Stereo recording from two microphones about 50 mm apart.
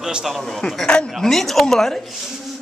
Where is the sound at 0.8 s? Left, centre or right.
Centre.